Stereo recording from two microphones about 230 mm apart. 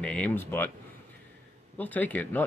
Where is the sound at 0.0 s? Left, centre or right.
Centre.